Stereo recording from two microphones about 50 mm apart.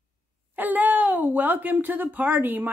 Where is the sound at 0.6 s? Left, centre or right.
Right.